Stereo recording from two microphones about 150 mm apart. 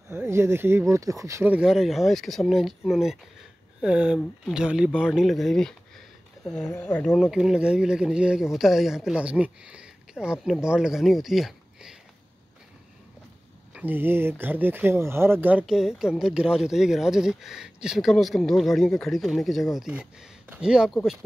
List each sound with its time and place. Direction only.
0.1 s speech: 15° right (ahead or behind)
13.7 s speech: 15° right (ahead or behind)